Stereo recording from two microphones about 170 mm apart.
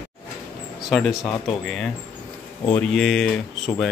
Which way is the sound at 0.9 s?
Centre (ahead or behind).